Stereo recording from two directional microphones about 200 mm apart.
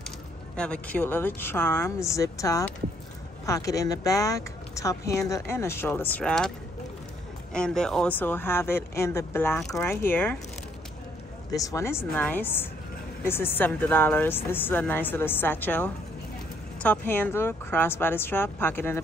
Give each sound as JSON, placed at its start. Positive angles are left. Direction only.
{"t": 0.6, "sound": "speech", "side_deg": 5}
{"t": 7.5, "sound": "speech", "side_deg": 5}
{"t": 11.5, "sound": "speech", "side_deg": 15}